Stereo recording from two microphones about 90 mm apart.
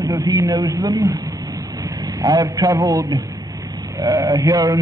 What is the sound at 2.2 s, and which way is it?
A man's voice, 40° right (ahead or behind).